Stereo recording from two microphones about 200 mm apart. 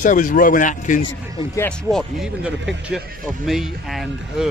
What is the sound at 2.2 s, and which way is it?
A man's voice, 5° right (ahead or behind).